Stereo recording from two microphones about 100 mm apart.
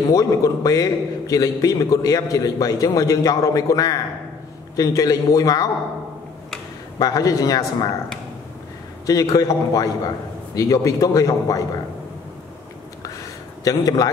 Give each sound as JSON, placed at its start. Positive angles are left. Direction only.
{"t": 0.1, "sound": "a man's voice", "side_deg": 35}
{"t": 7.0, "sound": "a man's voice", "side_deg": 35}
{"t": 9.0, "sound": "a man's voice", "side_deg": 40}
{"t": 13.7, "sound": "a man's voice", "side_deg": 35}